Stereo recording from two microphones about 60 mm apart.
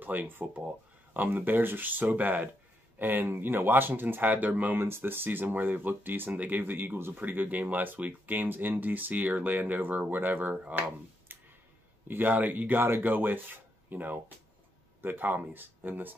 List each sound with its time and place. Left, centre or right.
0.0 s speech: right
4.8 s speech: right